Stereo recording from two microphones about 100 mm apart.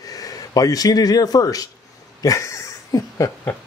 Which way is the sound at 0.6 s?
40° left (ahead or behind).